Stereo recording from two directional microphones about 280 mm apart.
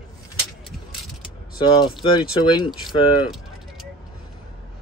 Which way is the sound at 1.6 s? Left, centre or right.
Centre.